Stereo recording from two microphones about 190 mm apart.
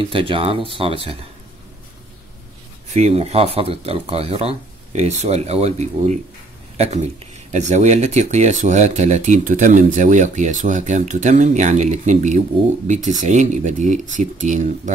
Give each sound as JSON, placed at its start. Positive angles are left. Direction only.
{"t": 0.1, "sound": "speech", "side_deg": -25}
{"t": 2.9, "sound": "speech", "side_deg": -35}